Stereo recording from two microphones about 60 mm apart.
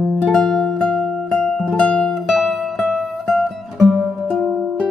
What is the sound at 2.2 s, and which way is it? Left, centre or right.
Music, centre.